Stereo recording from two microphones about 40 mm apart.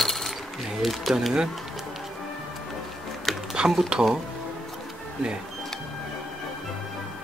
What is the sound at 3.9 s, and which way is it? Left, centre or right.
Speech, right.